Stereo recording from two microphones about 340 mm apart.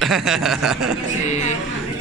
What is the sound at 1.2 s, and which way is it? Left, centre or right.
Speech, centre.